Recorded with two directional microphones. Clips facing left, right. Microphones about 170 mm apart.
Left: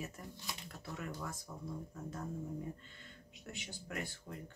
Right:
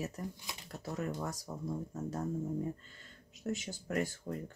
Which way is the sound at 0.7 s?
40° right (ahead or behind).